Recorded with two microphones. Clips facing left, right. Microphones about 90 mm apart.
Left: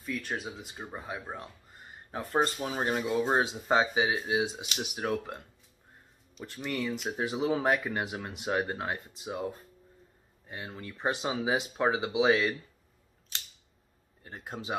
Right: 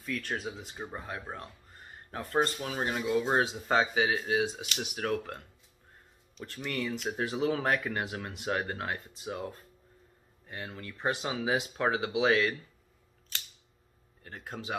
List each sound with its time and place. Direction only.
0.0 s speech: 10° left (ahead or behind)
6.4 s speech: 15° left (ahead or behind)
14.2 s speech: 20° left (ahead or behind)